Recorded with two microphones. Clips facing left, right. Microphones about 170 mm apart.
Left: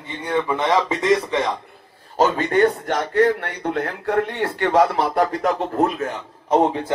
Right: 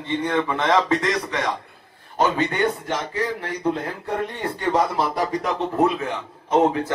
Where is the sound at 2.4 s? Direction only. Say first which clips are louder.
Left 5 dB; 50° left (ahead or behind).